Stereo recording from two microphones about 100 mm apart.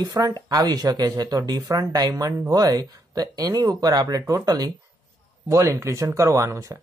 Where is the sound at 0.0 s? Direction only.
40° right (ahead or behind).